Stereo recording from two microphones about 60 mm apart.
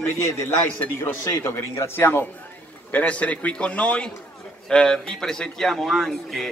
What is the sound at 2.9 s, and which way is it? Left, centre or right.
A man's voice, left.